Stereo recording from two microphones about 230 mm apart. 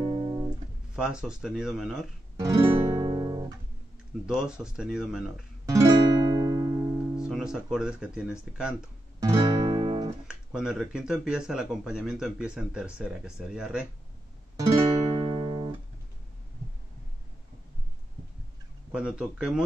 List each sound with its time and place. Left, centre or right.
0.0 s music: right
0.9 s speech: centre
2.3 s guitar: centre
4.3 s speech: centre
5.7 s music: centre
7.2 s speech: centre
9.2 s music: right
10.2 s speech: centre
15.2 s music: right
18.9 s speech: centre